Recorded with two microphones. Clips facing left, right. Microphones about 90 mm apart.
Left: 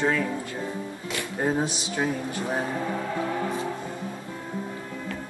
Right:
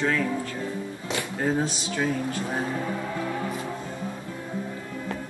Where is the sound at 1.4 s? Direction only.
20° left (ahead or behind).